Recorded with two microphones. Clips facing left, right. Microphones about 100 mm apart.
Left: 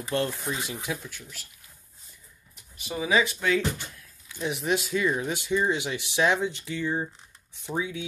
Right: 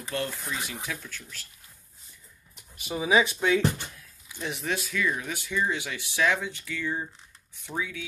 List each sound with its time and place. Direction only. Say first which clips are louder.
0.1 s speech: left 4 dB; 30° left (ahead or behind)
0.8 s speech: left 3 dB; 15° left (ahead or behind)
3.0 s speech: right 1 dB; 15° right (ahead or behind)
4.4 s speech: left 4 dB; 10° left (ahead or behind)